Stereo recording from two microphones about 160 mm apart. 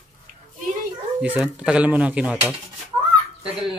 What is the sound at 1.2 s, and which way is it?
Speech, 10° right (ahead or behind).